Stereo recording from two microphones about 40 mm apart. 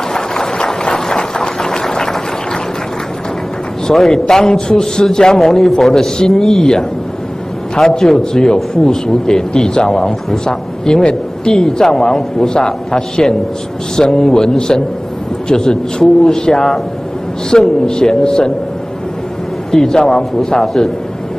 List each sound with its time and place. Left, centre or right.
0.1 s a sound: centre
3.8 s a man's voice: centre
8.0 s a man's voice: centre
8.5 s a man's voice: centre
19.7 s a man's voice: centre